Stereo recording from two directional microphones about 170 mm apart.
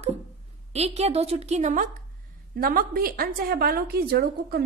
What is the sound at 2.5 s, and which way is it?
Speech, 60° right (ahead or behind).